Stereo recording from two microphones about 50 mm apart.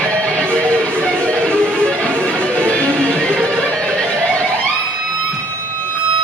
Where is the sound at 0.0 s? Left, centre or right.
Left.